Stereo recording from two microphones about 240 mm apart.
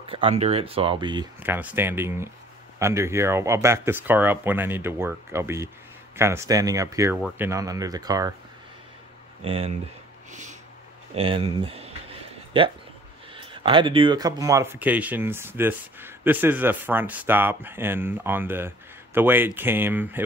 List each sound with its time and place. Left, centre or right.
0.1 s speech: right
1.4 s speech: centre
9.4 s speech: right
11.1 s a sound: right
13.3 s speech: right